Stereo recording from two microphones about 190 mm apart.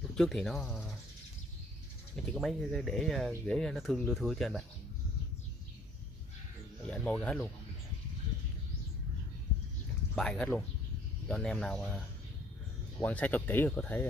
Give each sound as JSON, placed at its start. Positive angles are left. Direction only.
{"t": 0.1, "sound": "speech", "side_deg": 0}
{"t": 2.1, "sound": "speech", "side_deg": 0}
{"t": 6.9, "sound": "speech", "side_deg": 5}
{"t": 10.1, "sound": "speech", "side_deg": 5}
{"t": 13.0, "sound": "speech", "side_deg": 10}